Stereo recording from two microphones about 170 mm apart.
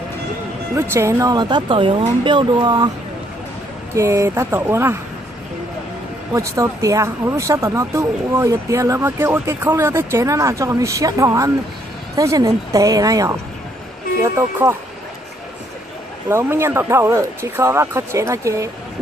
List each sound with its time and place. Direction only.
0.7 s speech: 15° right (ahead or behind)
3.9 s speech: 15° right (ahead or behind)
6.3 s speech: 20° right (ahead or behind)
16.3 s speech: 15° right (ahead or behind)